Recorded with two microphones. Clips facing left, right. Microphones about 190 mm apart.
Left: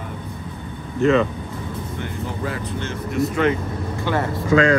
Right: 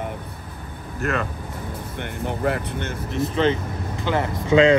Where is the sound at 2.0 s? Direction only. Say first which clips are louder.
Right 4 dB; 60° right (ahead or behind).